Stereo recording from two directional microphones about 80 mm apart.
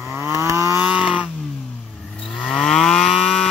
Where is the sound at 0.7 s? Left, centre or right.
Centre.